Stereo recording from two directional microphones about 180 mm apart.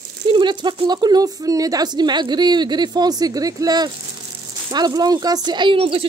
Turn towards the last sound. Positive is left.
turn(degrees=-30)  # may be behind; listen again after turning